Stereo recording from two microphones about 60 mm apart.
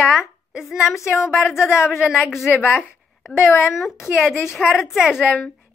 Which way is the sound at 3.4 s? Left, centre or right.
Left.